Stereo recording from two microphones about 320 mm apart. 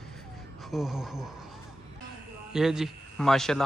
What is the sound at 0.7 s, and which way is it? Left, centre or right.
Speech, centre.